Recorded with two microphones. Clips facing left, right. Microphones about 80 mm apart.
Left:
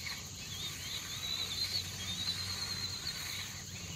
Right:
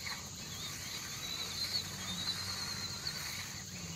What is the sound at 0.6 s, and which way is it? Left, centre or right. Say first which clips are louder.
Vehicle: left 1 dB; centre.